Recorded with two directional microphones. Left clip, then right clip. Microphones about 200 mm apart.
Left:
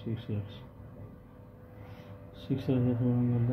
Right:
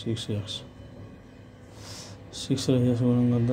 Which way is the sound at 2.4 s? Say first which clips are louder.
Right 6 dB; 40° right (ahead or behind).